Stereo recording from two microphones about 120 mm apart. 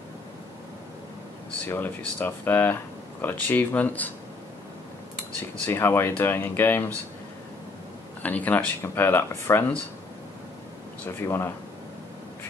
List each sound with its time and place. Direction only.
1.7 s speech: 15° left (ahead or behind)
5.7 s speech: 20° left (ahead or behind)
8.2 s speech: 15° left (ahead or behind)
11.1 s speech: 20° left (ahead or behind)